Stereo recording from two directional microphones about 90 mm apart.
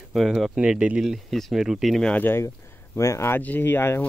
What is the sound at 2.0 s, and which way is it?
Speech, 20° left (ahead or behind).